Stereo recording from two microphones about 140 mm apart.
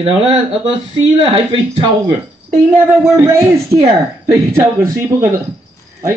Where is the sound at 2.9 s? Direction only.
20° right (ahead or behind).